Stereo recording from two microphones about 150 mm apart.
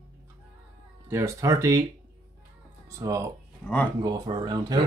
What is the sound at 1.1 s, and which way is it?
Speech, 20° right (ahead or behind).